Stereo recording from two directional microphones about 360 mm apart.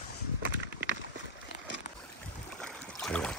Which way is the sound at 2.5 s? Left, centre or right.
Centre.